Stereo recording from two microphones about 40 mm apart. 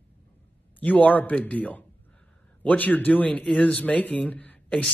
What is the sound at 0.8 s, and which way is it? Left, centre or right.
Speech, left.